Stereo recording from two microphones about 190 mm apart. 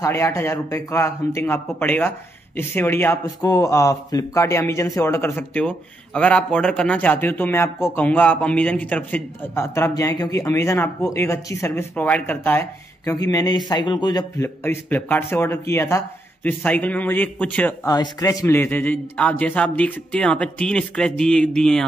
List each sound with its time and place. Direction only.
0.0 s a man's voice: 15° left (ahead or behind)
17.8 s a man's voice: 20° left (ahead or behind)